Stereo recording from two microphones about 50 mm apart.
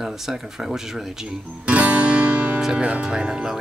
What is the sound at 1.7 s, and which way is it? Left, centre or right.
Music, right.